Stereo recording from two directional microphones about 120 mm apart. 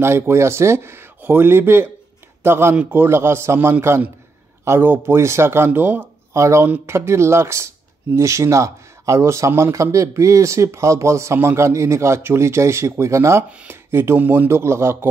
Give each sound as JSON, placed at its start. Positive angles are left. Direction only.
{"t": 0.0, "sound": "speech", "side_deg": -20}